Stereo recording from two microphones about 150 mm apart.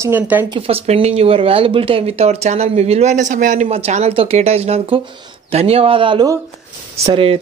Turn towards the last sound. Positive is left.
turn(degrees=-40)  # may be behind; listen again after turning